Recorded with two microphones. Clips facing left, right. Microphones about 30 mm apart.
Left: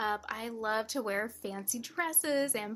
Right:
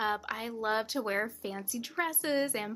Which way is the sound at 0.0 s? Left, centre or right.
Centre.